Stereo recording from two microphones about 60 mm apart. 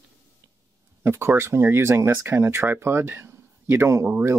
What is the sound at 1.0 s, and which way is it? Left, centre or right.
Speech, right.